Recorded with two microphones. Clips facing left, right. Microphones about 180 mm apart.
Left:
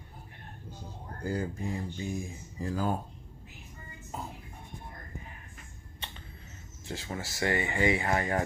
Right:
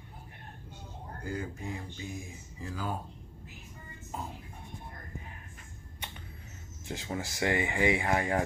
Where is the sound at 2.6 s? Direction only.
45° left (ahead or behind).